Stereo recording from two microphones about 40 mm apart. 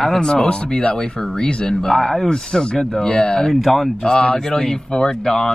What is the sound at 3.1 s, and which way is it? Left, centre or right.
Speech, left.